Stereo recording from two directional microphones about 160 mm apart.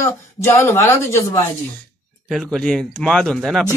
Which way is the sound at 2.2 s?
Centre (ahead or behind).